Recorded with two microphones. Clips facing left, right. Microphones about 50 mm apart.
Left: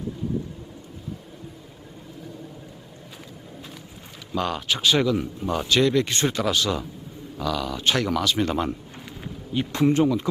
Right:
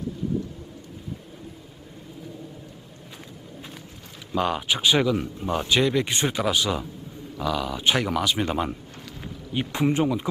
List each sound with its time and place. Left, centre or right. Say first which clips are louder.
4.4 s speech: right 1 dB; centre